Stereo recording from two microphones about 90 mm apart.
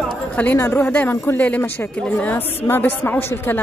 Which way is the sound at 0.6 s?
25° left (ahead or behind).